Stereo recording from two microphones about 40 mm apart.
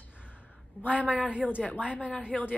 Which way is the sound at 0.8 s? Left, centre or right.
Left.